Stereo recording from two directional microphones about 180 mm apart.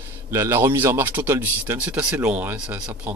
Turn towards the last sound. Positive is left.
turn(degrees=-5)  # may be behind; listen again after turning